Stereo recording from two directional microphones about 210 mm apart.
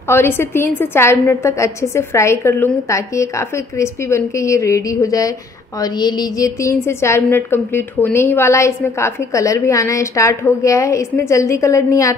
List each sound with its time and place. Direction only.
0.1 s a woman's voice: 10° left (ahead or behind)